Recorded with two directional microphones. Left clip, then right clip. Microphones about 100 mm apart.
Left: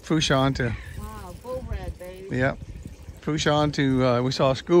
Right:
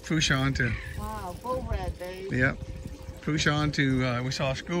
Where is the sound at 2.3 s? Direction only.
20° left (ahead or behind); by 4.8 s 60° left (ahead or behind).